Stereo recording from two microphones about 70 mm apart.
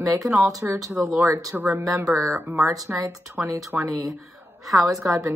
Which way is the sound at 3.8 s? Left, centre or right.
Centre.